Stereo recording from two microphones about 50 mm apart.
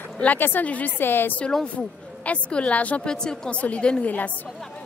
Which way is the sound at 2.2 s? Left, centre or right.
Left.